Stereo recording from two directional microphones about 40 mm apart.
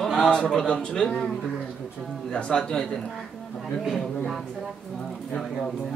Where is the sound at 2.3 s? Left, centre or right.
Left.